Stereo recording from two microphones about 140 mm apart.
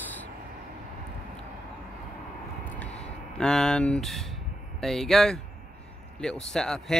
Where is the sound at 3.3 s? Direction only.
5° left (ahead or behind).